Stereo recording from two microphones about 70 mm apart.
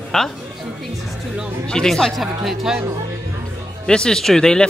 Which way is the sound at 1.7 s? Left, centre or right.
Centre.